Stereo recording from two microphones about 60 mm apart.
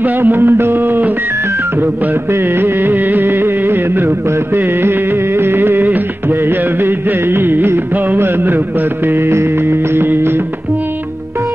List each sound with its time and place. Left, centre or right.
0.0 s music: right
2.3 s music: right